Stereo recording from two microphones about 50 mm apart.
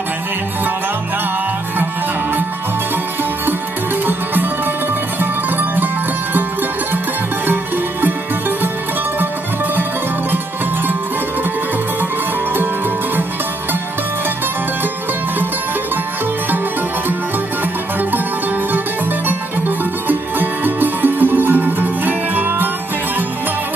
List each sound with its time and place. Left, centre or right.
4.0 s music: right
20.1 s music: right